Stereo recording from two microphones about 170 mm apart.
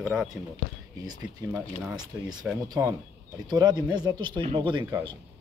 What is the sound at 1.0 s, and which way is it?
Speech, 20° right (ahead or behind).